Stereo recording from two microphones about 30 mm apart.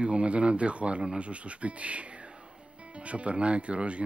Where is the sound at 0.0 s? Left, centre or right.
Right.